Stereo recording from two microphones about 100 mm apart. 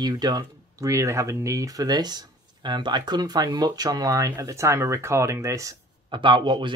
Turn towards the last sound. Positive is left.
turn(degrees=-50)  # may be behind; listen again after turning